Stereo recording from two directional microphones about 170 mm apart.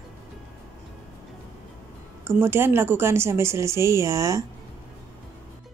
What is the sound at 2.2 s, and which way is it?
Speech, 15° right (ahead or behind).